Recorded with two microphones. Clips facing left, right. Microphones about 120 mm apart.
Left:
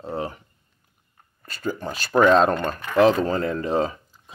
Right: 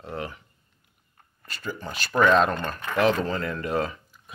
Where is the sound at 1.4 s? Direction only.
45° left (ahead or behind).